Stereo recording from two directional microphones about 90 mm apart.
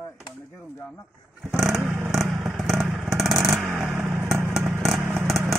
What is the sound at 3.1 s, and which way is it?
Vehicle, centre (ahead or behind).